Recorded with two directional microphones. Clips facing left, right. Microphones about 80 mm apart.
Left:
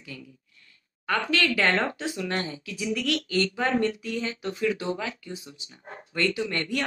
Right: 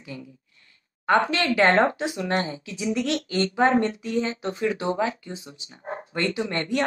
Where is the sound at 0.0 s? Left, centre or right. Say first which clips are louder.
Right 4 dB; right.